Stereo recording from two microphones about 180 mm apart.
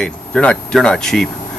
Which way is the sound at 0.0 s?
5° left (ahead or behind).